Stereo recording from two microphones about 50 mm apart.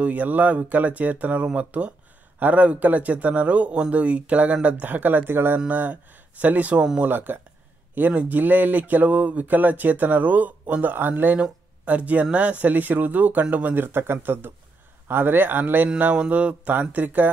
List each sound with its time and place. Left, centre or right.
0.0 s speech: right
5.7 s speech: right
7.1 s speech: right
11.3 s speech: right
13.9 s speech: right
16.3 s speech: right